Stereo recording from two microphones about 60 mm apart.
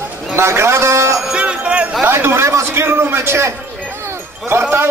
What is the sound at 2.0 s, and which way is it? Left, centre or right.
Speech, right.